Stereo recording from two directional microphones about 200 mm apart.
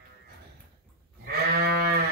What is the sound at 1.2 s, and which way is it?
Sheep, 55° right (ahead or behind).